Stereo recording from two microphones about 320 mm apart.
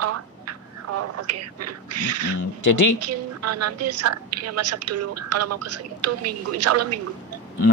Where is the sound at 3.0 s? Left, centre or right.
Right.